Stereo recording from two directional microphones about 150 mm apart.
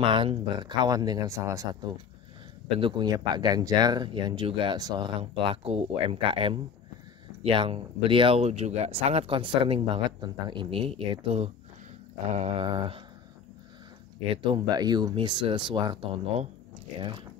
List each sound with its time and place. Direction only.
0.0 s speech: 35° right (ahead or behind)
5.2 s speech: 40° right (ahead or behind)
14.3 s speech: 35° right (ahead or behind)